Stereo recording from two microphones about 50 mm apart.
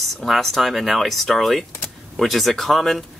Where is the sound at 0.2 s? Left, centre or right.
Centre.